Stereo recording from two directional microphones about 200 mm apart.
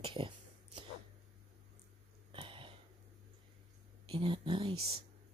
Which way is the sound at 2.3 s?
25° right (ahead or behind).